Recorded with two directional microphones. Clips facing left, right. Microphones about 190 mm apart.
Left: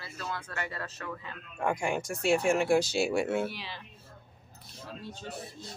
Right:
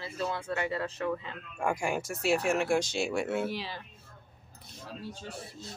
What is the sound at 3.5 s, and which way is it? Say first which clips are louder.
Speech: right 6 dB; 40° right (ahead or behind).